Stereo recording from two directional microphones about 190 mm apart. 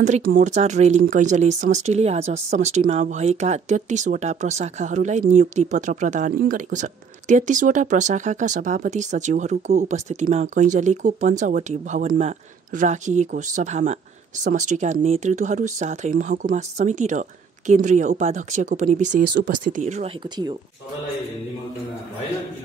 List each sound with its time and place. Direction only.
0.0 s speech: 45° right (ahead or behind)